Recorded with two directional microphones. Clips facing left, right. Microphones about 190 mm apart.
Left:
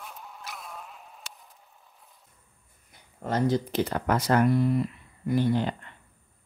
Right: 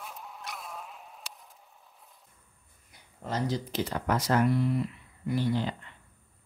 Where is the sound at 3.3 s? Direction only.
55° left (ahead or behind).